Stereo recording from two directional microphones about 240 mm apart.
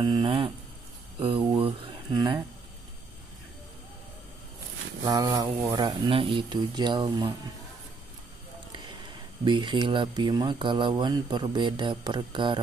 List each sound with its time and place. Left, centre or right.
0.0 s speech: centre
5.0 s speech: centre
9.4 s speech: centre